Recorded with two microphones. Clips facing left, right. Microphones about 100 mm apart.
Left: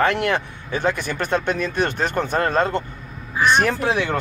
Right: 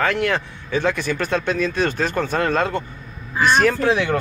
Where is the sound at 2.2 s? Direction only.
20° left (ahead or behind).